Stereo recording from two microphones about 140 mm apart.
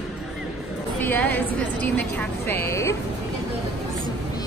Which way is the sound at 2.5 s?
15° left (ahead or behind).